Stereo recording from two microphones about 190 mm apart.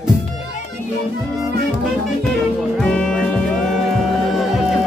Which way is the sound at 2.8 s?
5° left (ahead or behind).